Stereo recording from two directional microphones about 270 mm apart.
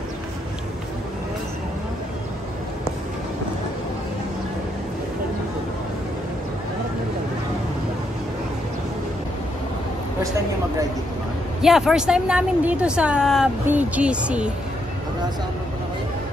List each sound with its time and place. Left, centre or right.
11.6 s a woman's voice: centre